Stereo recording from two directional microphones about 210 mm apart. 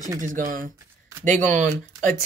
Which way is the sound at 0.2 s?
40° right (ahead or behind).